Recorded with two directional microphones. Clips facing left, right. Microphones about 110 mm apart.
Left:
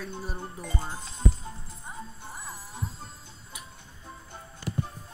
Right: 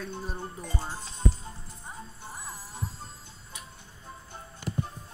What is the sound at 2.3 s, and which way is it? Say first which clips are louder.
Music: right 2 dB; centre (ahead or behind).